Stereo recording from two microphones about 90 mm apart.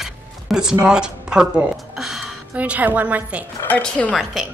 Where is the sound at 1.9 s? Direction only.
5° right (ahead or behind).